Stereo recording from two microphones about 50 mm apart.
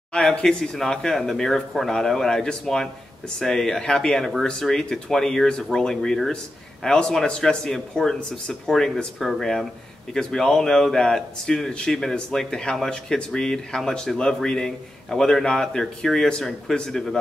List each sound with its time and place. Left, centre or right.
0.1 s speech: centre